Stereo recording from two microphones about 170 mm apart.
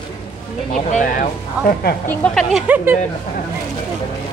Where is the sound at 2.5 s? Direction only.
10° right (ahead or behind).